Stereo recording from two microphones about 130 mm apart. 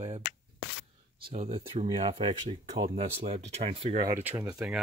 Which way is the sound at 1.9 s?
45° right (ahead or behind).